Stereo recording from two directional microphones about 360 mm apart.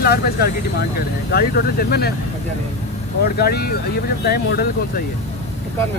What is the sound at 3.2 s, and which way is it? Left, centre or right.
Speech, left.